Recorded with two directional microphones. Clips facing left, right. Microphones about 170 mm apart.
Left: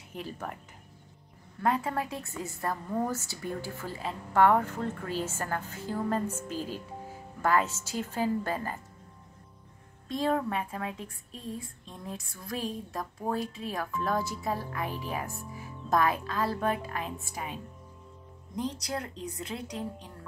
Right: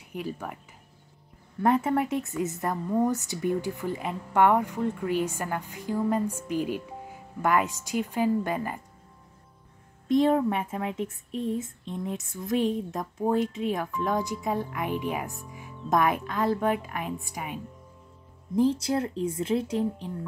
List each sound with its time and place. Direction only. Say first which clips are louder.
0.1 s a woman's voice: right 4 dB; 10° right (ahead or behind)
1.6 s a woman's voice: right 6 dB; 25° right (ahead or behind)
10.0 s a woman's voice: right 7 dB; 25° right (ahead or behind)
18.6 s speech: right 10 dB; 30° right (ahead or behind)